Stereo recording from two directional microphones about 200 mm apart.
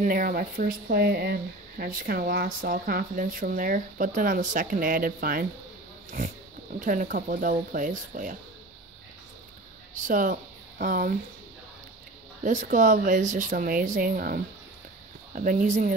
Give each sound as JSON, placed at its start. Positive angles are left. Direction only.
{"t": 0.0, "sound": "speech", "side_deg": -45}
{"t": 6.8, "sound": "speech", "side_deg": -40}
{"t": 9.9, "sound": "speech", "side_deg": -40}
{"t": 12.4, "sound": "speech", "side_deg": -40}